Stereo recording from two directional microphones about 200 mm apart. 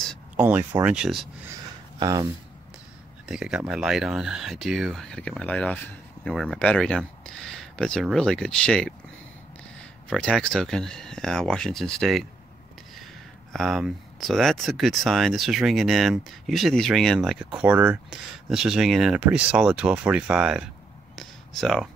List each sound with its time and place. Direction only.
0.4 s speech: 10° right (ahead or behind)
2.0 s speech: 15° right (ahead or behind)
3.3 s speech: 5° right (ahead or behind)
10.0 s speech: 5° left (ahead or behind)
21.2 s a sound: centre (ahead or behind)